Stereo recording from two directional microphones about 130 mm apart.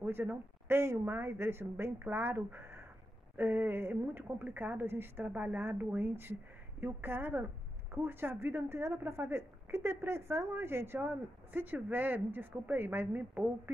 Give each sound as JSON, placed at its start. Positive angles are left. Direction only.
{"t": 0.0, "sound": "a woman's voice", "side_deg": -15}